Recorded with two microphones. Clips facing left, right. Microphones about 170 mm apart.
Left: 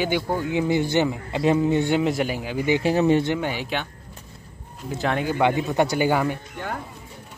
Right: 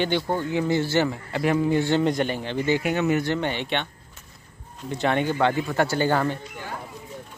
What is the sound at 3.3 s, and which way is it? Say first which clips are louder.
Speech: even; 5° left (ahead or behind).